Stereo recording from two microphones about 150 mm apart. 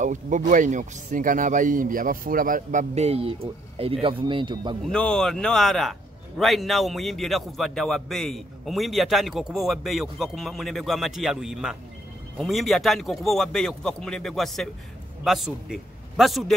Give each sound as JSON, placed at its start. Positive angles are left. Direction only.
{"t": 0.0, "sound": "speech", "side_deg": -55}
{"t": 4.9, "sound": "a man's voice", "side_deg": 5}